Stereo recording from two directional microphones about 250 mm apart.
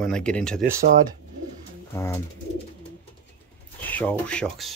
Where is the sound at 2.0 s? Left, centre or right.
Centre.